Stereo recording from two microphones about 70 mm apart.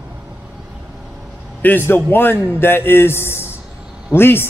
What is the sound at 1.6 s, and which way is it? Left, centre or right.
A man's voice, left.